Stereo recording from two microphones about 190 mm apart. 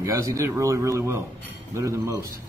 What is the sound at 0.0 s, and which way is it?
Speech, 20° right (ahead or behind).